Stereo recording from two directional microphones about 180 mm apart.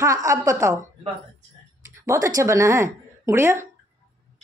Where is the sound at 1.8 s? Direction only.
15° right (ahead or behind).